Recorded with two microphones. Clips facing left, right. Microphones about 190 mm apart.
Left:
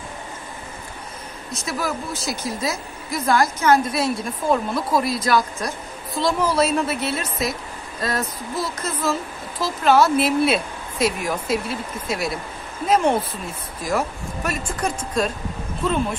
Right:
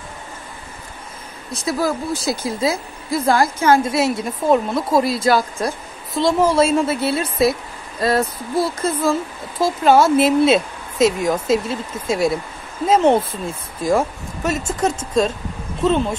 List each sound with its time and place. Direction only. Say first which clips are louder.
1.5 s a woman's voice: right 6 dB; 35° right (ahead or behind)
12.8 s a woman's voice: right 4 dB; 25° right (ahead or behind)